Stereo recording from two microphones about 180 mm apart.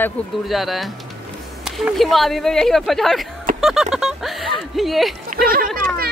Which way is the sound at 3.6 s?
Centre (ahead or behind).